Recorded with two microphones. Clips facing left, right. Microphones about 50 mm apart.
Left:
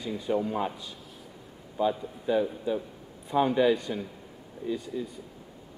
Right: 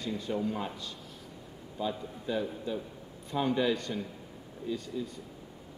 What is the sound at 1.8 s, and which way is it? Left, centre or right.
A man's voice, centre.